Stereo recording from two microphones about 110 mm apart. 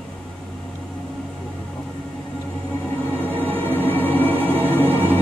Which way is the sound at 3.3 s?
20° right (ahead or behind).